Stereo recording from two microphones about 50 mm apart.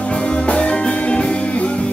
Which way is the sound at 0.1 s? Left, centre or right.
Left.